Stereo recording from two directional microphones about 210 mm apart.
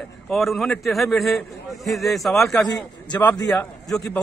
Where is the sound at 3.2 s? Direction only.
5° left (ahead or behind).